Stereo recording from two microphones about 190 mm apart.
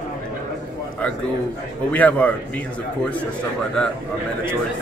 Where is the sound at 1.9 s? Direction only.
10° left (ahead or behind).